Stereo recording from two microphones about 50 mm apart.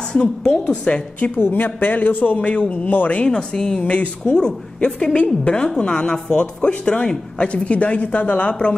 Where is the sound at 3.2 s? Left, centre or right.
Centre.